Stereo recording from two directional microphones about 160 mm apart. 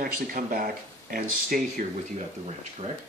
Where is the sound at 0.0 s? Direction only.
60° right (ahead or behind).